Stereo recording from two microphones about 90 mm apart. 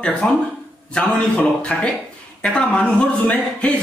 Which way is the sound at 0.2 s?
15° left (ahead or behind).